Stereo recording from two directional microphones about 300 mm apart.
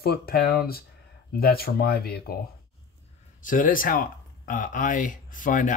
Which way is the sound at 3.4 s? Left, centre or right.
Left.